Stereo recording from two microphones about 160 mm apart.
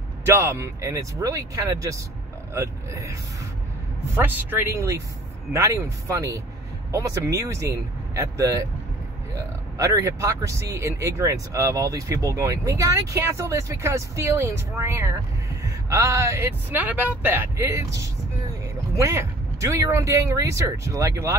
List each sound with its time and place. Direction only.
0.2 s speech: 15° right (ahead or behind)
9.8 s speech: 15° right (ahead or behind)